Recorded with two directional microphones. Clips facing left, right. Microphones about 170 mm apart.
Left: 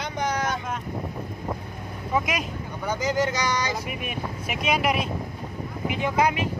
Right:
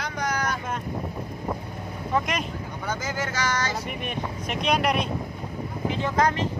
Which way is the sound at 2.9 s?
15° left (ahead or behind).